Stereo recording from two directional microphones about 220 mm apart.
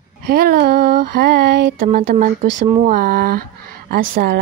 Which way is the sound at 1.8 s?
35° right (ahead or behind).